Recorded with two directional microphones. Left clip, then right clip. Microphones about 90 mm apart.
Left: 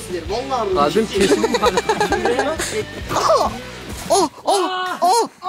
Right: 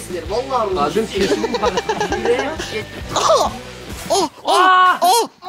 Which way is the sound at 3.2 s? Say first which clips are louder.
Right 1 dB; 5° right (ahead or behind).